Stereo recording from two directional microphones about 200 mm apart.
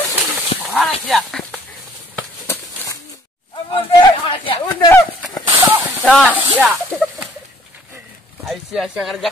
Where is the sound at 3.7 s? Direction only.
30° left (ahead or behind).